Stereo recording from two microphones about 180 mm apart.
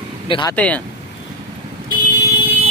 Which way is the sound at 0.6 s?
10° left (ahead or behind).